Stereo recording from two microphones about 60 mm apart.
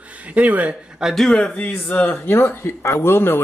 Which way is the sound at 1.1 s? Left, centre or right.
Centre.